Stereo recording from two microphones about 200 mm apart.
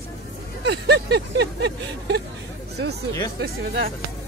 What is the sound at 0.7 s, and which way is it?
Speech, 55° right (ahead or behind).